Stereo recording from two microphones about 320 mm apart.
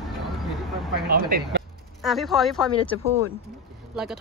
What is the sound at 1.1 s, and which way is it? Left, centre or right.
Speech, right.